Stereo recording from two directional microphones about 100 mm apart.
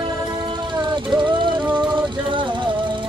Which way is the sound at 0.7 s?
50° right (ahead or behind).